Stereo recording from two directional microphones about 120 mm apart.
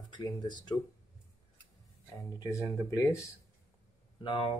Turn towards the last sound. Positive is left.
turn(degrees=45)  # may be behind; listen again after turning